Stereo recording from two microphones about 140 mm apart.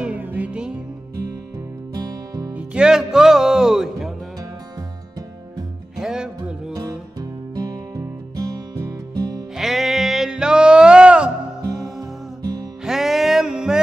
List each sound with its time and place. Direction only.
0.0 s music: 10° right (ahead or behind)
2.0 s music: 25° right (ahead or behind)
2.5 s music: 5° right (ahead or behind)
5.9 s music: 5° right (ahead or behind)
6.7 s music: 25° right (ahead or behind)
9.6 s music: centre (ahead or behind)
12.0 s music: 25° right (ahead or behind)
12.8 s music: centre (ahead or behind)